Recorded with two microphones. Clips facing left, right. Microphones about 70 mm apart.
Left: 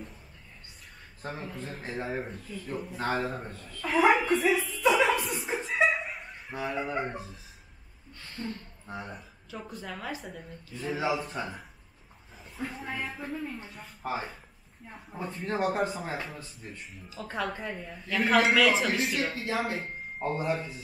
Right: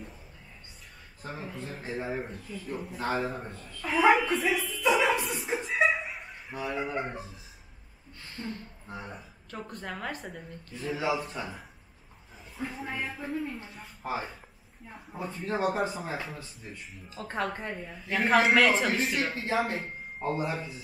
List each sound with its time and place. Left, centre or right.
1.2 s a woman's voice: centre
3.5 s a sound: centre
8.4 s a woman's voice: centre
15.1 s a woman's voice: centre
17.1 s speech: right
17.5 s a woman's voice: centre
19.3 s speech: right
20.5 s a woman's voice: centre